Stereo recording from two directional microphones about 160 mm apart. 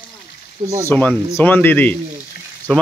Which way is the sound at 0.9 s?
10° left (ahead or behind).